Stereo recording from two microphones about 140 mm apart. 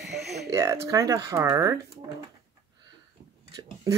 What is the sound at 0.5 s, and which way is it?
Speech, 20° right (ahead or behind).